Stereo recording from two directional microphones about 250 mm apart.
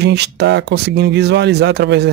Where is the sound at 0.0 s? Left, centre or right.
Right.